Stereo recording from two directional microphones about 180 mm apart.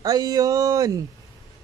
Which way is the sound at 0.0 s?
20° right (ahead or behind).